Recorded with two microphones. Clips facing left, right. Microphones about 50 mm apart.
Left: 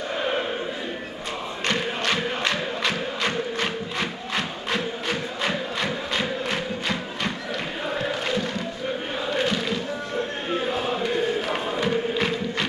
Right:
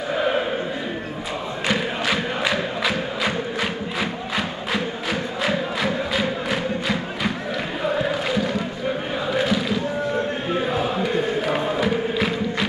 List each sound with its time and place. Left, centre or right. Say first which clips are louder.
0.1 s a sound: right 5 dB; centre
1.7 s crowd: right 2 dB; centre
7.8 s chant: right 5 dB; centre
9.3 s a sound: right 3 dB; centre
10.6 s chant: right 3 dB; centre
12.1 s music: right 2 dB; centre